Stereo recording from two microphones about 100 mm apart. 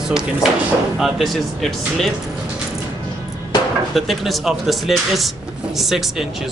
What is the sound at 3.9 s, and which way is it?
Speech, centre (ahead or behind).